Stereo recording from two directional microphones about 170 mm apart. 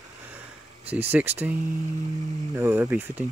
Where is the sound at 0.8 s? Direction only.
10° right (ahead or behind).